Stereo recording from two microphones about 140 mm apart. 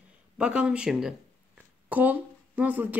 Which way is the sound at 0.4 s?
5° right (ahead or behind).